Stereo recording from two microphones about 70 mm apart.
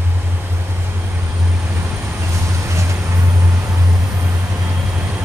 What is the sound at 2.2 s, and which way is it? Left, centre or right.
Vehicle, right.